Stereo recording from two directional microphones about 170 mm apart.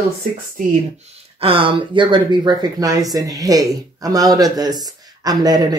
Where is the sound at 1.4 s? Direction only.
30° right (ahead or behind).